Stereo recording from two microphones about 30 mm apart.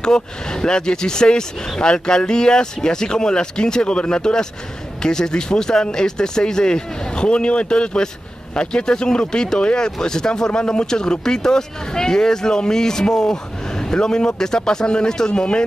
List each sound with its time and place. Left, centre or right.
0.0 s speech: left